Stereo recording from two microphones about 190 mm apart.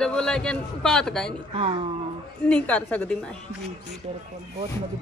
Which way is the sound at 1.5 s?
30° right (ahead or behind).